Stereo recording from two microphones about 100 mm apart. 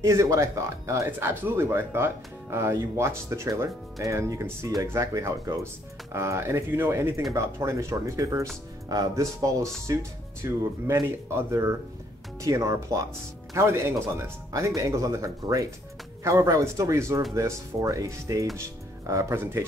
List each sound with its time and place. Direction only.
0.0 s speech: 30° right (ahead or behind)